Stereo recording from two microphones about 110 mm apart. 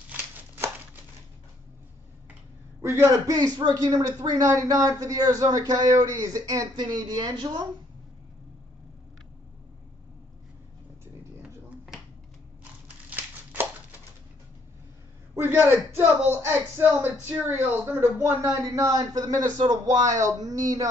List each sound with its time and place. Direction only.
2.8 s a woman's voice: 25° right (ahead or behind)
11.4 s finger snapping: 10° right (ahead or behind)
13.1 s a sound: 15° right (ahead or behind)
15.3 s a man's voice: 20° right (ahead or behind)